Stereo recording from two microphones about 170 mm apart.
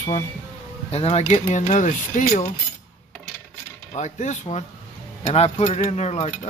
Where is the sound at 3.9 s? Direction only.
45° left (ahead or behind).